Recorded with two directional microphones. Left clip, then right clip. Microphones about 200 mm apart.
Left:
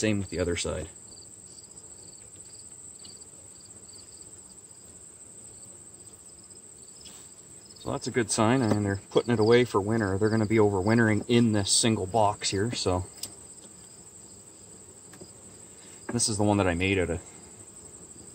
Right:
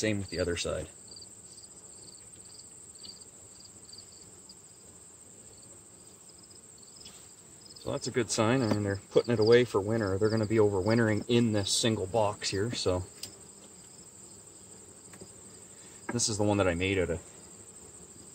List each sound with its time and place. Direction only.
0.4 s cricket: 35° left (ahead or behind)
7.8 s speech: 25° left (ahead or behind)
16.2 s speech: 25° left (ahead or behind)